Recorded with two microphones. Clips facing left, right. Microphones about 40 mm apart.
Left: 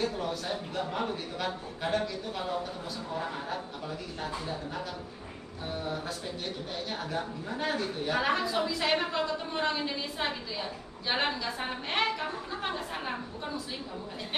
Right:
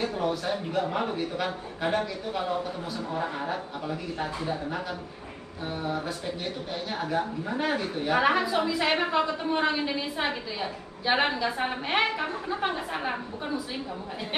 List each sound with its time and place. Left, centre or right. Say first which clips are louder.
0.0 s a woman's voice: right 4 dB; centre
5.9 s a woman's voice: right 4 dB; centre